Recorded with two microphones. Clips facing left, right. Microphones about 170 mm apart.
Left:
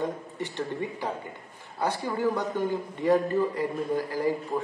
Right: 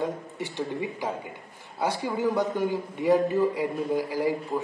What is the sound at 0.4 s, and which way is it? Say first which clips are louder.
Speech: right 1 dB; 10° right (ahead or behind).